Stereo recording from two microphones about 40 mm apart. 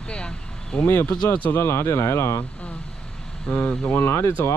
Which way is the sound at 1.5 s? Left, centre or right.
Left.